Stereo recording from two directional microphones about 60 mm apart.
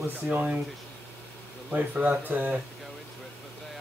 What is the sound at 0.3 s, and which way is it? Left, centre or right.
Speech, right.